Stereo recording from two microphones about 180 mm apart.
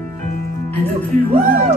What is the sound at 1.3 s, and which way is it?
Music, 50° right (ahead or behind).